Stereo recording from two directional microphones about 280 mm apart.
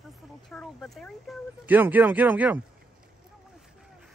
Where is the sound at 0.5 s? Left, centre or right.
Centre.